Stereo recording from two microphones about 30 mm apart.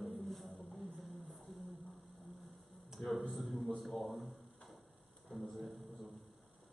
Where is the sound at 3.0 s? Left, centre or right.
Centre.